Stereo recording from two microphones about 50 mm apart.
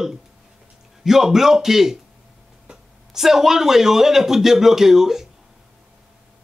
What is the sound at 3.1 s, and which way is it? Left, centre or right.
Speech, centre.